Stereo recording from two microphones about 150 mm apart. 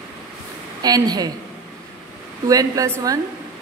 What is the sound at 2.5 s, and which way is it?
Speech, 25° right (ahead or behind).